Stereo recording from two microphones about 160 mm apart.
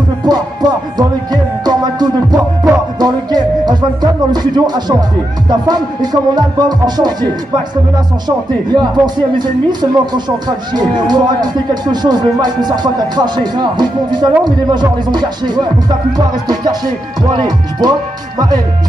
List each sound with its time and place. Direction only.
0.2 s music: 25° right (ahead or behind)
5.5 s speech: 25° right (ahead or behind)
8.7 s speech: 25° right (ahead or behind)